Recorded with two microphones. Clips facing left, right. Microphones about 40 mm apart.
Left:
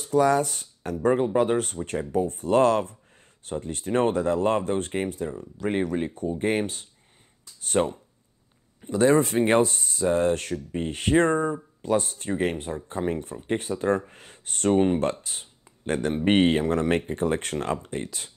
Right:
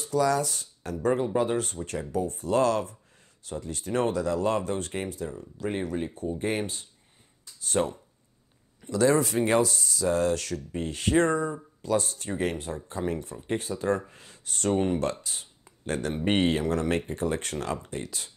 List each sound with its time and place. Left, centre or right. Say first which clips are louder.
0.0 s speech: left 4 dB; left
7.8 s speech: left 3 dB; centre
15.2 s a sound: even; left
16.3 s speech: left 4 dB; left